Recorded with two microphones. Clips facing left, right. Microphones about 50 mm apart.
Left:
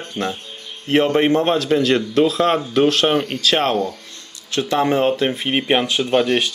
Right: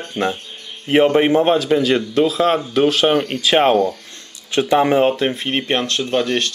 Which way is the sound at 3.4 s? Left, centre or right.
Centre.